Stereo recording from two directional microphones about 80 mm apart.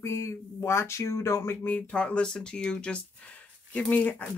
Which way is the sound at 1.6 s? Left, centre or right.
Centre.